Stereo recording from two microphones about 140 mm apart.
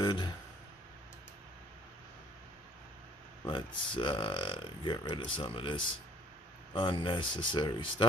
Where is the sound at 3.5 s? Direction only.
35° left (ahead or behind).